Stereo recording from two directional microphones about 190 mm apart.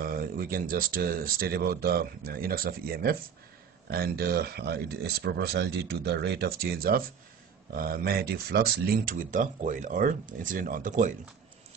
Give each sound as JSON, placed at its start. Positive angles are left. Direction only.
{"t": 0.0, "sound": "speech", "side_deg": -50}